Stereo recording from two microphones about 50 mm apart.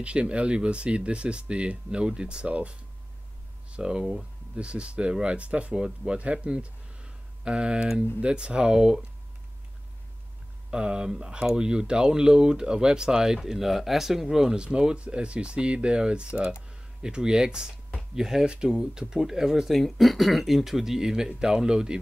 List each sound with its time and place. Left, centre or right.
0.0 s speech: right
10.7 s speech: centre
19.7 s speech: centre